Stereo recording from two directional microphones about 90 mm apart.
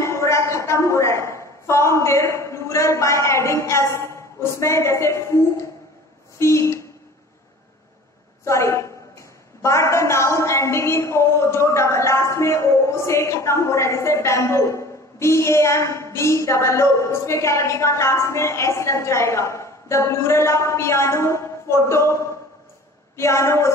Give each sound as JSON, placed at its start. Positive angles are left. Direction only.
{"t": 0.0, "sound": "a sound", "side_deg": 35}
{"t": 8.5, "sound": "a woman's voice", "side_deg": 35}
{"t": 23.1, "sound": "a woman's voice", "side_deg": 30}